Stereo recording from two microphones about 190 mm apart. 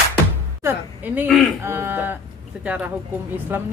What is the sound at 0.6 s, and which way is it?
Speech, 10° right (ahead or behind).